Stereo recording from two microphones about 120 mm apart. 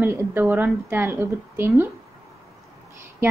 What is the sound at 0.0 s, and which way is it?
A woman's voice, 20° right (ahead or behind).